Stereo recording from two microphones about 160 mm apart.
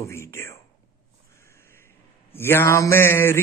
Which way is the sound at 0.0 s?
15° left (ahead or behind).